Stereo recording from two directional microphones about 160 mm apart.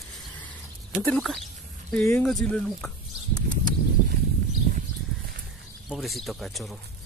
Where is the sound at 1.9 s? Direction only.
5° left (ahead or behind).